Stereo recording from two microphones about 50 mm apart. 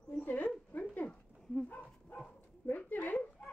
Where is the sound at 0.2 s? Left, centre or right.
Left.